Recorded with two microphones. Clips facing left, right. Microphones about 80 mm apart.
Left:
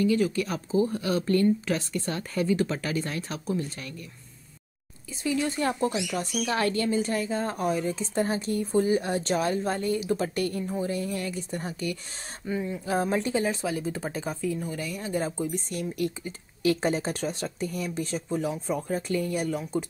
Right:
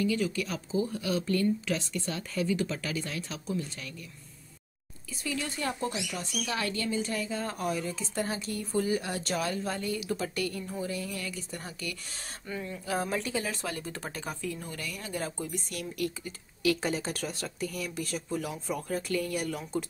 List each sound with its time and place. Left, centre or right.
0.0 s speech: left
5.1 s speech: left
12.4 s speech: centre
13.6 s speech: centre